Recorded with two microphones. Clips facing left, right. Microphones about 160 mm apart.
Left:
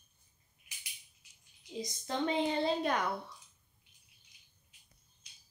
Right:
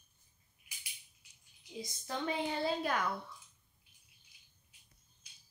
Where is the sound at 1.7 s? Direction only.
20° left (ahead or behind).